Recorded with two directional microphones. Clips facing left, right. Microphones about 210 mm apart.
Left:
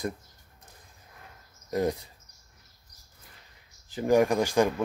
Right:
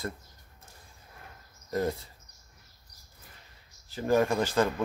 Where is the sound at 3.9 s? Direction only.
15° left (ahead or behind).